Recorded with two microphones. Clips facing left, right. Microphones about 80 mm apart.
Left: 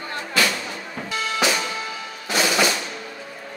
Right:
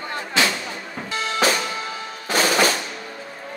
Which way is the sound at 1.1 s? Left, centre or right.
Right.